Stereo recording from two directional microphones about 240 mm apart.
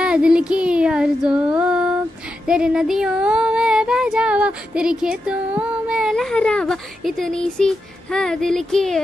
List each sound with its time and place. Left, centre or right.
0.0 s child singing: centre